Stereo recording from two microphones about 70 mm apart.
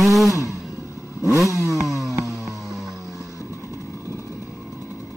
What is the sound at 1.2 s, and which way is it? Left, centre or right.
Motorcycle, right.